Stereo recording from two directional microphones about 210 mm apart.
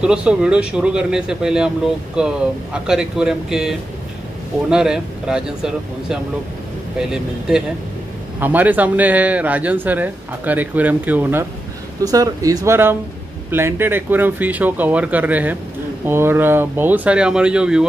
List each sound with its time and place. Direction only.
0.0 s a man's voice: 5° right (ahead or behind)